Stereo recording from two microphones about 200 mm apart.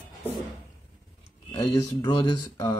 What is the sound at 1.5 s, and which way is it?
Speech, 20° left (ahead or behind).